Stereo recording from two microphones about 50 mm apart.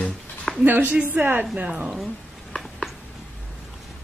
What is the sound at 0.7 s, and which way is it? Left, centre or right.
Speech, right.